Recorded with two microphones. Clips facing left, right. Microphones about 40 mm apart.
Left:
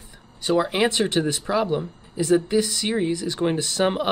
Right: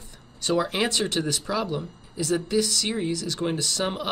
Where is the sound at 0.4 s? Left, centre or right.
Centre.